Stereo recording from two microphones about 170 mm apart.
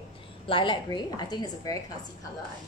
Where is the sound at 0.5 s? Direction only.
30° left (ahead or behind).